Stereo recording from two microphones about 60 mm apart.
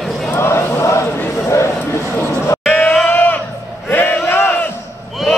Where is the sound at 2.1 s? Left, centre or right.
Left.